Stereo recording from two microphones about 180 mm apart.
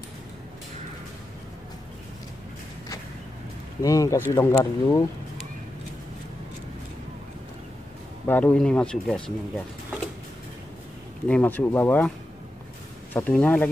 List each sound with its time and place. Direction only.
3.8 s speech: 20° left (ahead or behind)
8.3 s speech: 10° left (ahead or behind)
11.2 s speech: 10° left (ahead or behind)
13.1 s speech: 10° left (ahead or behind)